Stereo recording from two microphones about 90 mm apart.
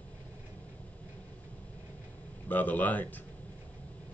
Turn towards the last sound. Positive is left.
turn(degrees=20)  # may be behind; listen again after turning